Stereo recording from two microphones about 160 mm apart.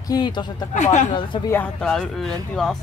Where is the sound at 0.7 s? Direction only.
50° left (ahead or behind).